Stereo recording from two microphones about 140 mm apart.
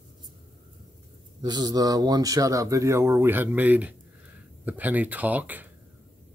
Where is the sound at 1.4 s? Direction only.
30° right (ahead or behind); by 5.7 s 10° right (ahead or behind).